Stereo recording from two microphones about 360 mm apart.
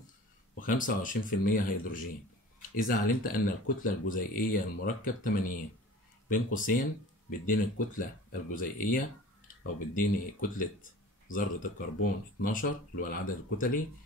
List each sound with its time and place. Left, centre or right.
0.6 s speech: left